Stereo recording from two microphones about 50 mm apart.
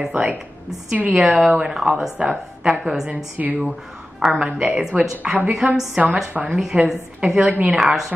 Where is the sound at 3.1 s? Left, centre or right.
Right.